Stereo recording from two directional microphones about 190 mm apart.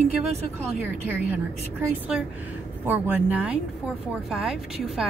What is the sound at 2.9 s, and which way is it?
A woman's voice, 10° right (ahead or behind).